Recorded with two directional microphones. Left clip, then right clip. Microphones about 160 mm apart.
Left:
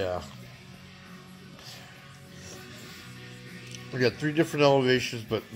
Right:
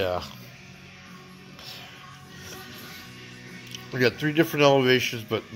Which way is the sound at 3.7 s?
5° right (ahead or behind).